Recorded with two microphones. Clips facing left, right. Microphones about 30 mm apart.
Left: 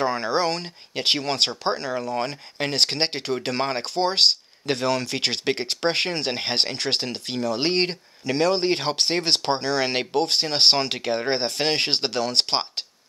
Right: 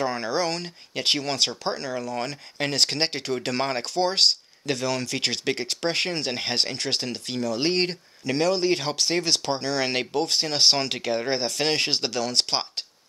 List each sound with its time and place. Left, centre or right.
0.0 s speech: left
2.7 s speech: left
3.9 s speech: left